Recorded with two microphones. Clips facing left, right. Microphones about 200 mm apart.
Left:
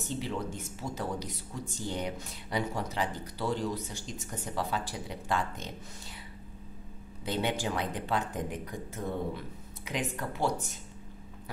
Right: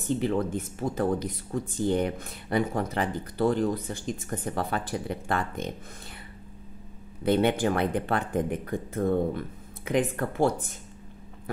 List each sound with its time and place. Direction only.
0.0 s speech: 55° right (ahead or behind)
7.2 s speech: 55° right (ahead or behind)